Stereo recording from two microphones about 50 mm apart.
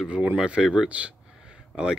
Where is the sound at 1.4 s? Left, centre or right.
Centre.